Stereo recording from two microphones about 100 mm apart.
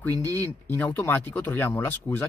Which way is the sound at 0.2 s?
25° left (ahead or behind).